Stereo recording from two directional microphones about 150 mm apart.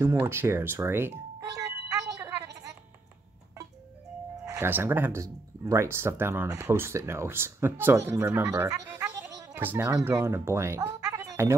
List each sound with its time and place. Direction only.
0.0 s music: 15° right (ahead or behind)
4.5 s speech: 15° right (ahead or behind)
8.8 s music: 20° right (ahead or behind)
9.5 s speech: 15° right (ahead or behind)